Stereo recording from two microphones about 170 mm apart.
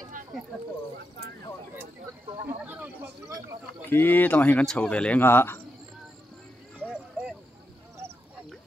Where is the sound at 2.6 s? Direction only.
10° right (ahead or behind).